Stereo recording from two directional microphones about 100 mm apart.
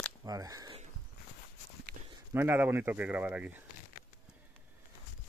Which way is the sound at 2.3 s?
25° right (ahead or behind).